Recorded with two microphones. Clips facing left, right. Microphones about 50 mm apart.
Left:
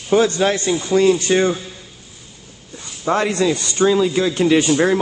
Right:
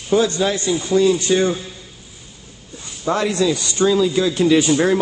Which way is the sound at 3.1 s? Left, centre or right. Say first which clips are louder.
Left 1 dB; left.